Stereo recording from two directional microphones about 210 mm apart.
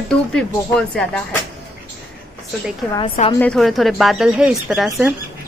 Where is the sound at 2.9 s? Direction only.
25° left (ahead or behind).